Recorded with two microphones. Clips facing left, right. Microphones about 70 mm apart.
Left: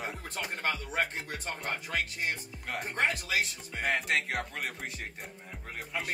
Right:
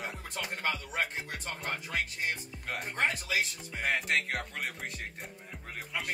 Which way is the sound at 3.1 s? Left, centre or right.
Left.